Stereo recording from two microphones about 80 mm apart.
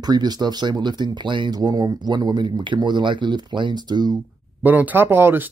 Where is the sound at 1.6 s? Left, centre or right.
Right.